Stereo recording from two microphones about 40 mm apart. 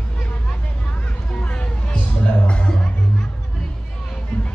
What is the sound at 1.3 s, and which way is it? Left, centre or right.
Music, left.